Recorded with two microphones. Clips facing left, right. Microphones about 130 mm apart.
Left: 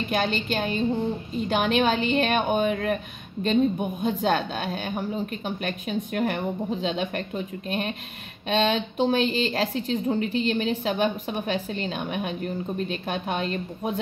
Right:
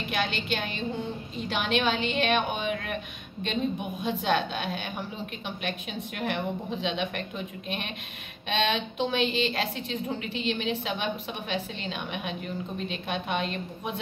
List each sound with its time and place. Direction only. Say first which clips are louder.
0.1 s a woman's voice: left 3 dB; 40° left (ahead or behind)
4.0 s a woman's voice: left 2 dB; 40° left (ahead or behind)